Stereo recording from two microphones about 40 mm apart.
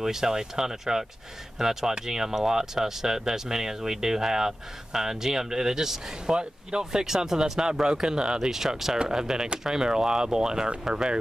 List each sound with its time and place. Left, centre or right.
0.0 s speech: centre
8.9 s speech: right